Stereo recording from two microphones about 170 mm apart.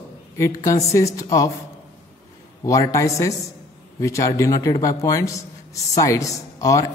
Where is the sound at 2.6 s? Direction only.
20° left (ahead or behind).